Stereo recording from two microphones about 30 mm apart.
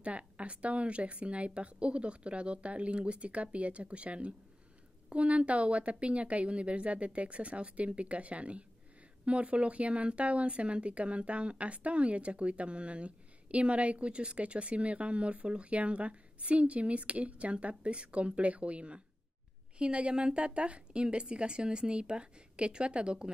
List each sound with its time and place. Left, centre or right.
0.0 s a woman's voice: right